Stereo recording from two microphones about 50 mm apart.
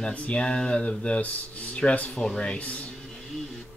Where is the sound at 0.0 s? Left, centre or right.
Left.